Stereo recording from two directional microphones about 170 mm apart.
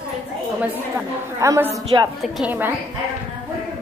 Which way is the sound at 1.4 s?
15° right (ahead or behind).